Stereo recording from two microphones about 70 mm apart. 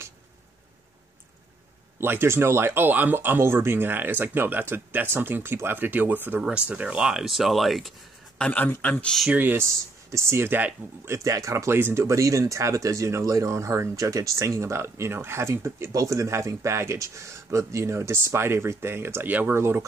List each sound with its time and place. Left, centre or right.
2.0 s speech: right
6.4 s speech: centre
8.4 s speech: left
8.9 s speech: centre
9.3 s speech: right
9.7 s speech: right
11.1 s speech: right
15.9 s speech: right